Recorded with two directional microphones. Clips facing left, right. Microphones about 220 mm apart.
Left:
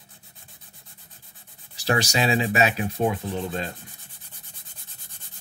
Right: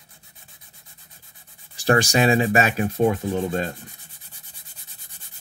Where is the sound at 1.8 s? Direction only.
50° right (ahead or behind).